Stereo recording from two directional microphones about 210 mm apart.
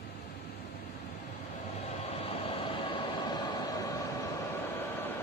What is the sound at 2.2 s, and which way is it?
Vehicle, 25° left (ahead or behind).